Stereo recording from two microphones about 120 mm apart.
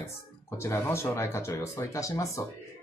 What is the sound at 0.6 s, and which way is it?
Speech, 20° left (ahead or behind).